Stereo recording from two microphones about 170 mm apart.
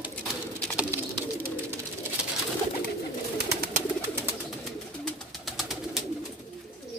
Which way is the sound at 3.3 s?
70° right (ahead or behind).